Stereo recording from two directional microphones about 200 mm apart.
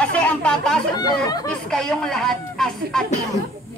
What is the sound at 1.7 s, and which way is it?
Speech, 5° left (ahead or behind).